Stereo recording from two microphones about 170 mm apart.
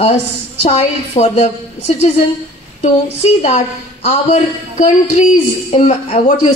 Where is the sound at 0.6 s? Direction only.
40° left (ahead or behind).